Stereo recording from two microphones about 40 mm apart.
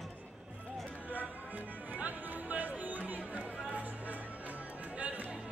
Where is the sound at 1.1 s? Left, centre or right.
Right.